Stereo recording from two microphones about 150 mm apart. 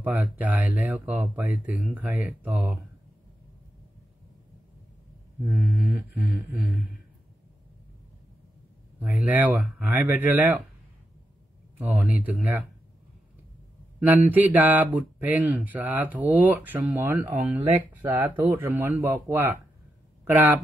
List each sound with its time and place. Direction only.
0.0 s speech: 10° right (ahead or behind)
5.5 s speech: centre (ahead or behind)
5.9 s speech: 10° right (ahead or behind)
9.0 s speech: 10° right (ahead or behind)
11.8 s speech: 10° right (ahead or behind)
14.0 s speech: 10° right (ahead or behind)